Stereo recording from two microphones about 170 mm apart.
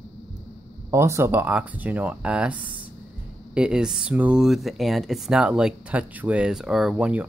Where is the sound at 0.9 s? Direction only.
15° right (ahead or behind).